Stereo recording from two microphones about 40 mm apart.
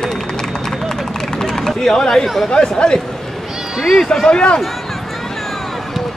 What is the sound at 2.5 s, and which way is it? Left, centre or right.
Speech, left.